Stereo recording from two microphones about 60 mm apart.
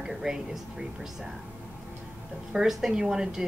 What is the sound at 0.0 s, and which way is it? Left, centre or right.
Speech, centre.